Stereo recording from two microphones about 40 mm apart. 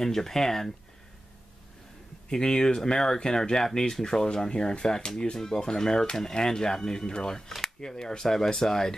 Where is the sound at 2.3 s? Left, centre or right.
Centre.